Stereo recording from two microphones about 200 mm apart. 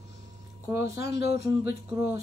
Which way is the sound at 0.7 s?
15° right (ahead or behind).